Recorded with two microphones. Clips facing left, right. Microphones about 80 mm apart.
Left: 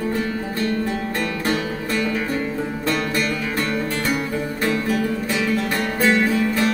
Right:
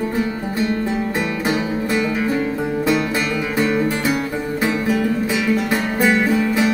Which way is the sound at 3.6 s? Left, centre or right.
Centre.